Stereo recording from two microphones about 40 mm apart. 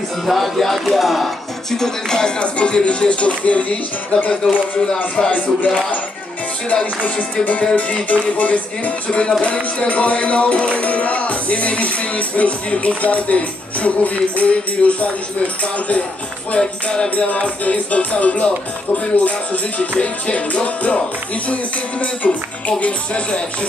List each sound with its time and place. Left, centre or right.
0.3 s speech: centre
2.4 s speech: left
6.7 s music: left
16.5 s speech: left
17.1 s music: left
22.0 s music: left